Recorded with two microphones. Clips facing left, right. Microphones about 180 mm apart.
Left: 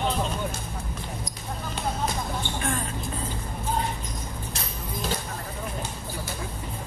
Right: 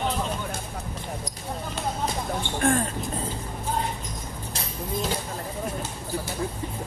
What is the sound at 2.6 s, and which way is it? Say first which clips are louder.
Speech: right 9 dB; 50° right (ahead or behind).